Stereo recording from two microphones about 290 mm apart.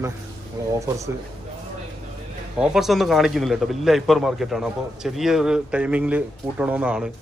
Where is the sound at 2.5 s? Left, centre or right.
Centre.